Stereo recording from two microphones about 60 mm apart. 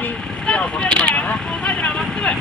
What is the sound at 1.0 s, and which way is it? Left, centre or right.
Vehicle, left.